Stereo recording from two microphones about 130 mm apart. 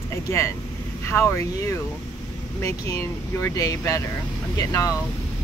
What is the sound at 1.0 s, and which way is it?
Speech, 20° left (ahead or behind).